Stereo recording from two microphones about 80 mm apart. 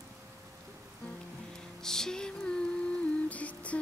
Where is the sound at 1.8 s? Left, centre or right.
Centre.